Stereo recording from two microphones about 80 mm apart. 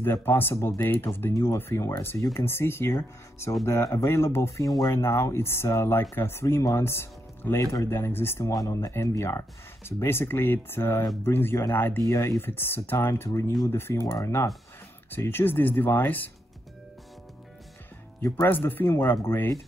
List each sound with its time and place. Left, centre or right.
0.0 s speech: left
8.6 s speech: left
12.1 s speech: left
12.4 s speech: left
15.0 s speech: left
18.3 s speech: left
19.2 s speech: left